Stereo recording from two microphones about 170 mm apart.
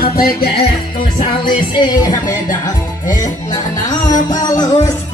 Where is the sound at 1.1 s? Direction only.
30° left (ahead or behind).